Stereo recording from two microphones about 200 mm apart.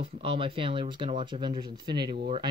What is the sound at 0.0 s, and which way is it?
Speech, 25° right (ahead or behind).